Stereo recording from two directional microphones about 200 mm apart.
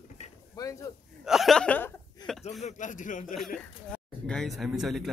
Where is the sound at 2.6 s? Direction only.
40° left (ahead or behind).